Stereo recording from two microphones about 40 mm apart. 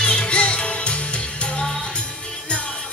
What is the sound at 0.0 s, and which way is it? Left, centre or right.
Music, left.